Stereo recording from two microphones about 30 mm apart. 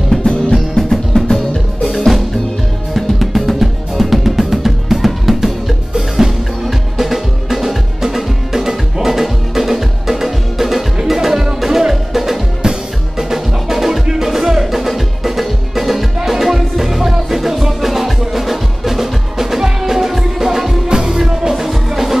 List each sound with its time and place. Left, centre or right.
0.2 s music: left
0.7 s music: centre
1.8 s music: centre
5.9 s music: centre
12.6 s music: right
13.2 s music: centre
20.9 s music: right
21.6 s music: centre